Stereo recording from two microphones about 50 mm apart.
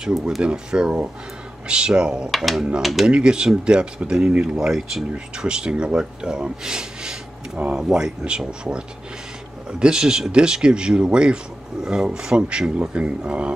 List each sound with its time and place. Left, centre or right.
0.0 s speech: centre
2.3 s speech: centre
3.1 s speech: centre
5.1 s speech: centre